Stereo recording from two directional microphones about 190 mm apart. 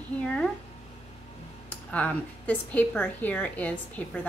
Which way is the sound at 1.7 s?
10° left (ahead or behind).